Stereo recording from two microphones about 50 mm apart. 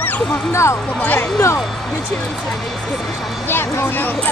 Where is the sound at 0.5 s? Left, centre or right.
Left.